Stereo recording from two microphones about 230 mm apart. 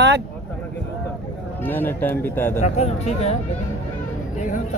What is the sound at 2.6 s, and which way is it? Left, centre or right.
Speech, left.